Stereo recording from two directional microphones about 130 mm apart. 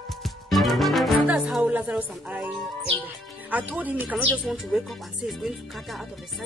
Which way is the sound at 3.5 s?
10° right (ahead or behind).